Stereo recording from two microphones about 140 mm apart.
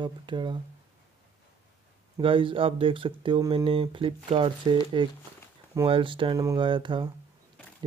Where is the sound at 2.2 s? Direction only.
40° right (ahead or behind).